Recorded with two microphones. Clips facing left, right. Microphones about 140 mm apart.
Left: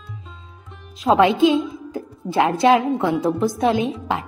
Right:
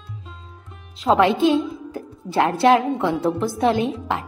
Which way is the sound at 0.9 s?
15° left (ahead or behind).